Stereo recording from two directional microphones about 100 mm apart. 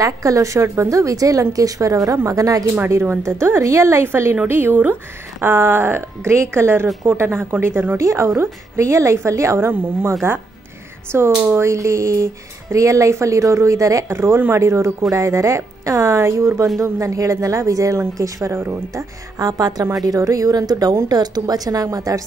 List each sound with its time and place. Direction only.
0.0 s a woman's voice: 35° right (ahead or behind)
2.8 s a woman's voice: 25° right (ahead or behind)